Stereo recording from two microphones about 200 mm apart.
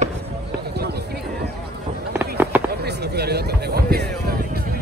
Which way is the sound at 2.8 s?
55° right (ahead or behind).